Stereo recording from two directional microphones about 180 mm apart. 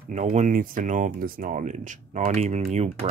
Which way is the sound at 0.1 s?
40° right (ahead or behind).